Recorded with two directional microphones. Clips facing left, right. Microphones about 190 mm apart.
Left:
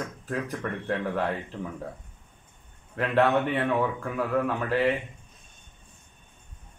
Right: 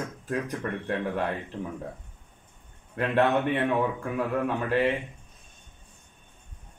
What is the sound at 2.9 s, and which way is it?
A man's voice, 15° right (ahead or behind).